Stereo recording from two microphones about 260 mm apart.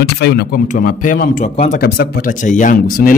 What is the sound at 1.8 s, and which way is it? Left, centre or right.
Speech, left.